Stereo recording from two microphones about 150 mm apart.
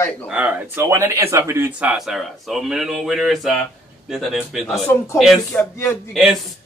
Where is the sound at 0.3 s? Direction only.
10° right (ahead or behind).